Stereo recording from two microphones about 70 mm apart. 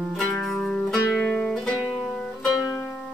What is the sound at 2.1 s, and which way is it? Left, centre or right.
Music, centre.